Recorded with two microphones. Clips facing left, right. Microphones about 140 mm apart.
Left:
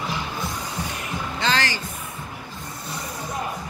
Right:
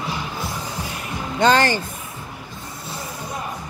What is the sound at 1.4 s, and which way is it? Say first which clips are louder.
Music: right 9 dB; 50° right (ahead or behind).